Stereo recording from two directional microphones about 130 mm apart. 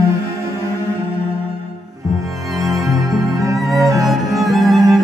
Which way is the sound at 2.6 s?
25° right (ahead or behind).